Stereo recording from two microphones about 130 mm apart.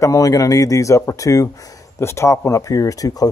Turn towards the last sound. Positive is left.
turn(degrees=30)  # may be behind; listen again after turning